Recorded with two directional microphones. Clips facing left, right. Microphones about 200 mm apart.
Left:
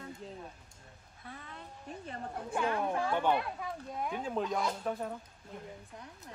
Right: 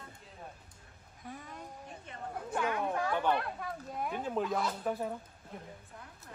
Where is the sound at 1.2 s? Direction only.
10° right (ahead or behind).